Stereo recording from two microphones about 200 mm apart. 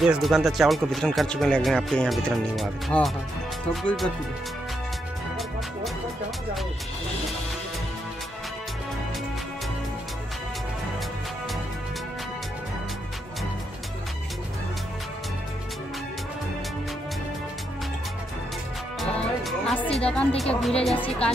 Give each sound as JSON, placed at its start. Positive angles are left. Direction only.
{"t": 0.0, "sound": "speech", "side_deg": 0}
{"t": 18.9, "sound": "music", "side_deg": 0}
{"t": 20.0, "sound": "speech", "side_deg": 5}